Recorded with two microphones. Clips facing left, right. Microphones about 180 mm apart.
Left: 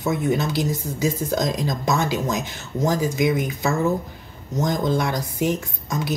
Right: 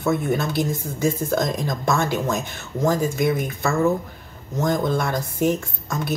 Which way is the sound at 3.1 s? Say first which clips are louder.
Left 1 dB; 10° left (ahead or behind).